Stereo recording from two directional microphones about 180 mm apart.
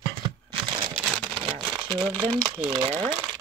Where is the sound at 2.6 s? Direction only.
30° right (ahead or behind).